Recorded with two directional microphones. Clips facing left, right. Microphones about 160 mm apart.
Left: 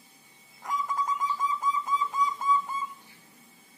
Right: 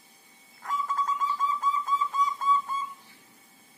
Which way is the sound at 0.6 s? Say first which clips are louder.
Even; 15° left (ahead or behind).